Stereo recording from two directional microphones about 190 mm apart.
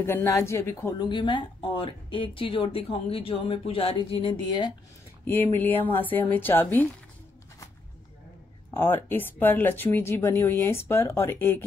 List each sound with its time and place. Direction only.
0.0 s speech: 15° left (ahead or behind)
5.2 s speech: 10° left (ahead or behind)
8.7 s speech: 10° left (ahead or behind)